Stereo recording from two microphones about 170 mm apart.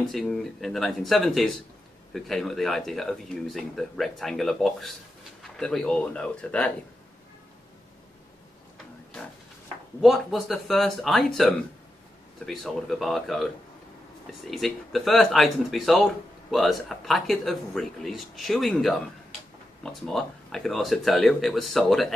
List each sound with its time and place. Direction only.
0.0 s speech: centre (ahead or behind)
10.0 s speech: centre (ahead or behind)
14.5 s speech: centre (ahead or behind)